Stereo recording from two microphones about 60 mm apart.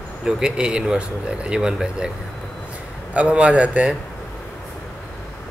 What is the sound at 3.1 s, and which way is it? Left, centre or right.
Speech, centre.